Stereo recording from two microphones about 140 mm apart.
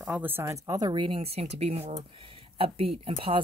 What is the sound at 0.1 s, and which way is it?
Speech, 15° right (ahead or behind).